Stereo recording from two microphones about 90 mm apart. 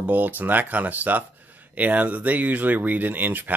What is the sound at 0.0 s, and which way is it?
Speech, 20° right (ahead or behind).